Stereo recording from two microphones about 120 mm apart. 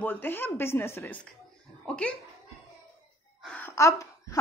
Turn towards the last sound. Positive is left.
turn(degrees=25)  # may be behind; listen again after turning